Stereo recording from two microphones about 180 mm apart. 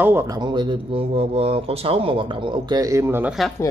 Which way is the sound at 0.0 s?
15° right (ahead or behind).